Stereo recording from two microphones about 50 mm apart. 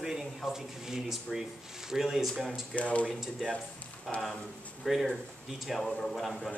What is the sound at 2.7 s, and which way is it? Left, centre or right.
Speech, left.